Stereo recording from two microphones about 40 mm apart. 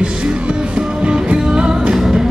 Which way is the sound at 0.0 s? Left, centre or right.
Right.